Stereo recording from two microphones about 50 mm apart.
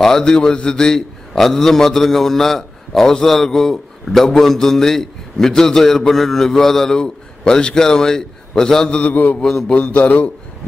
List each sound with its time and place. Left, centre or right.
0.0 s a man's voice: centre
9.1 s mantra: left
9.4 s a man's voice: centre
9.8 s a man's voice: left